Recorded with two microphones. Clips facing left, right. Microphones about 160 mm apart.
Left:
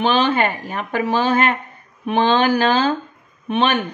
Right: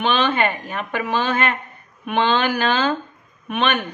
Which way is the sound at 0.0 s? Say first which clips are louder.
Left 2 dB; 40° left (ahead or behind).